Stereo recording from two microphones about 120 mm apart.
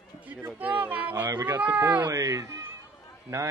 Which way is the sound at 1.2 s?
30° right (ahead or behind).